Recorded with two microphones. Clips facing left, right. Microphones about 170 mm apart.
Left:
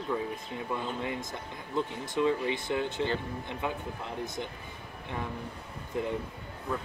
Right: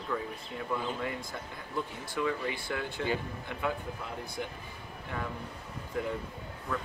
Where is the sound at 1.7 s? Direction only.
20° left (ahead or behind).